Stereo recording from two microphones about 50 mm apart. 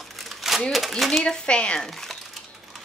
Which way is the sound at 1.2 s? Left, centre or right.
Centre.